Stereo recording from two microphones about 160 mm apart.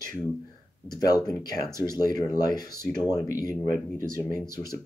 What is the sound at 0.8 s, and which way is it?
Speech, 25° left (ahead or behind).